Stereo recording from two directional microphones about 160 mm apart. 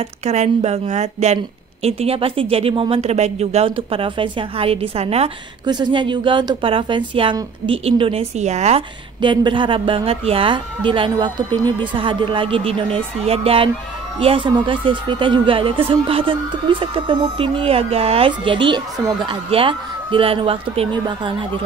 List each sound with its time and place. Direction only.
0.2 s a woman's voice: 45° right (ahead or behind)
5.7 s a woman's voice: 30° right (ahead or behind)